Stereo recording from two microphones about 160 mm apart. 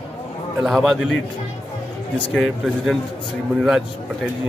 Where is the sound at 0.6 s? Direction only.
Centre (ahead or behind).